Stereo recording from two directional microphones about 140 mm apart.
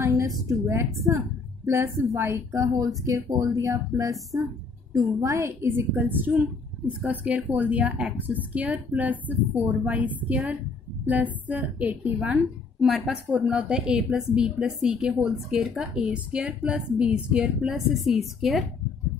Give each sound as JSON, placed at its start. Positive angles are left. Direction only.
{"t": 0.5, "sound": "a woman's voice", "side_deg": -20}